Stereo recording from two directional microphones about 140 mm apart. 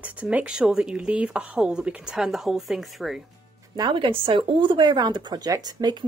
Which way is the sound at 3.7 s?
35° right (ahead or behind).